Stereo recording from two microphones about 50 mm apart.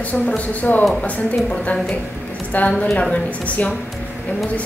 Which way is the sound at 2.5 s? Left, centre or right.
Left.